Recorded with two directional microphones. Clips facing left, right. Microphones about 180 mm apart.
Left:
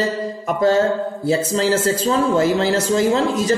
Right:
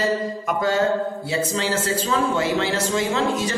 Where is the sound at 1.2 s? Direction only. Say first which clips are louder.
Left 6 dB; 40° left (ahead or behind).